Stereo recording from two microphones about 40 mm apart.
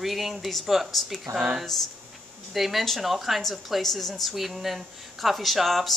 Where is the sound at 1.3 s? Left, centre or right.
Right.